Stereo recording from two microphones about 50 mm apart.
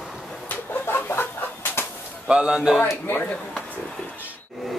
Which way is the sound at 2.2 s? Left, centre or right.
Centre.